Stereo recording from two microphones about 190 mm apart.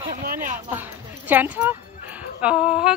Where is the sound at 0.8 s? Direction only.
10° right (ahead or behind).